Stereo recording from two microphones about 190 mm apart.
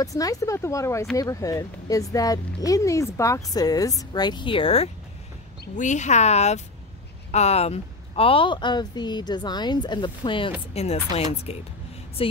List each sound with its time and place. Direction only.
0.0 s speech: 20° left (ahead or behind)